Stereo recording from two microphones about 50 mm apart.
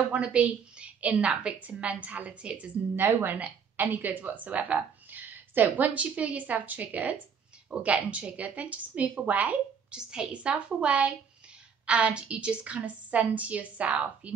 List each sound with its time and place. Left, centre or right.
0.1 s a woman's voice: right
3.1 s a woman's voice: right
9.9 s a woman's voice: centre